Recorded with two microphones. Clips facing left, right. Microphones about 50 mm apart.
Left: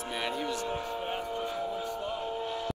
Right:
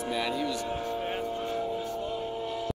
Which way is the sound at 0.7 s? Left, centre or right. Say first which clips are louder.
Right 2 dB; centre.